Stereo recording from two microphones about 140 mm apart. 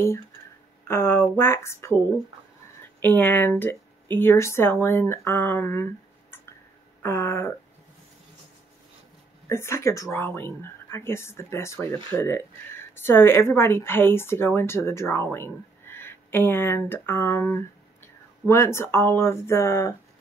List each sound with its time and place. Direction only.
0.8 s speech: 15° left (ahead or behind)
3.0 s speech: 15° left (ahead or behind)
7.0 s speech: 15° left (ahead or behind)
9.5 s speech: 20° left (ahead or behind)